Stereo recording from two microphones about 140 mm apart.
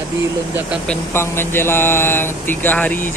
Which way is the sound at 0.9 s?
15° left (ahead or behind).